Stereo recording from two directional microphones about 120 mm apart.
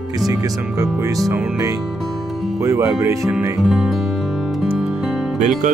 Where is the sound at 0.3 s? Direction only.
25° right (ahead or behind).